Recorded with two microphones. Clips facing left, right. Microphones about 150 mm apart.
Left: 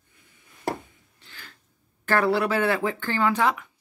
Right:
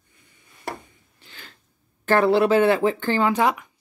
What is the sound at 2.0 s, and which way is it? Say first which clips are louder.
Speech: right 5 dB; 25° right (ahead or behind).